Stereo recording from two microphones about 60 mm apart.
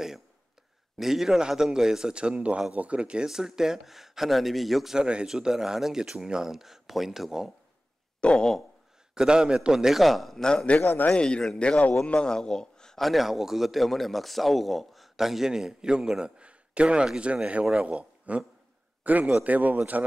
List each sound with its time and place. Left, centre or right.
0.9 s a man's voice: centre
4.9 s speech: centre
8.2 s a sound: centre
9.1 s speech: centre
10.4 s a man's voice: centre
10.8 s a man's voice: left
11.1 s a man's voice: centre; by 20.1 s right